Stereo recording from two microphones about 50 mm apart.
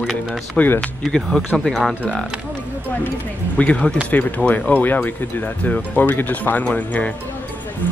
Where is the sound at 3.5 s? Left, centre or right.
Left.